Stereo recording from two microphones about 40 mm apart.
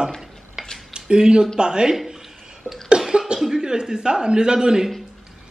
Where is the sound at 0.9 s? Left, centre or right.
Right.